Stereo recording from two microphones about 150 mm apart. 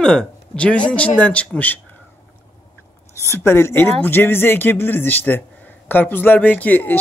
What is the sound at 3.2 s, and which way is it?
Speech, 15° left (ahead or behind).